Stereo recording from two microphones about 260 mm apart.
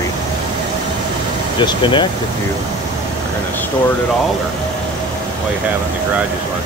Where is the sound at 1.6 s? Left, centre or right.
Centre.